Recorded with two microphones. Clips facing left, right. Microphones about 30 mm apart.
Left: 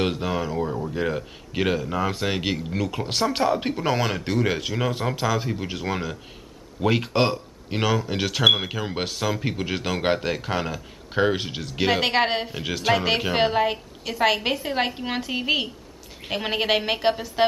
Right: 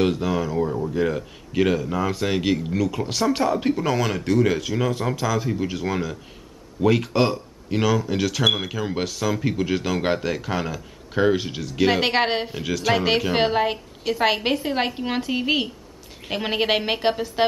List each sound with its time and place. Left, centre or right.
0.0 s speech: centre
11.9 s a woman's voice: centre
12.5 s speech: centre
12.9 s a woman's voice: centre